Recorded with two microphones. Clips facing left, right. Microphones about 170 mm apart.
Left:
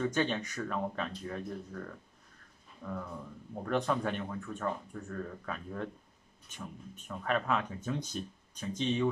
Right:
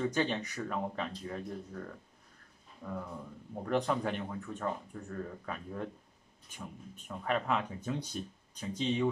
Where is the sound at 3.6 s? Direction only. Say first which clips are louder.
Even; 20° right (ahead or behind).